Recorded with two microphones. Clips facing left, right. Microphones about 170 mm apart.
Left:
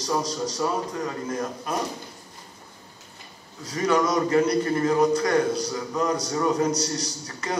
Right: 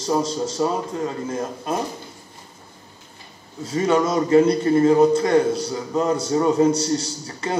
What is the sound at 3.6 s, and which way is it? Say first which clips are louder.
A man's voice: right 3 dB; 25° right (ahead or behind).